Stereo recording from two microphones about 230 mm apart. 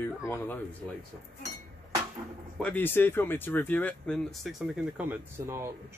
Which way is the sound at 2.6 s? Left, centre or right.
Centre.